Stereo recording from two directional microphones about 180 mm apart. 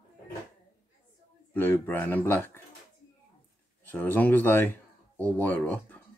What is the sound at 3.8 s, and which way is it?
Speech, 10° left (ahead or behind).